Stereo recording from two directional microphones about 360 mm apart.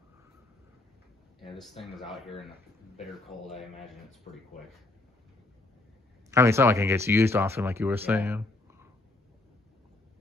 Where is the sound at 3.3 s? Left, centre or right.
Left.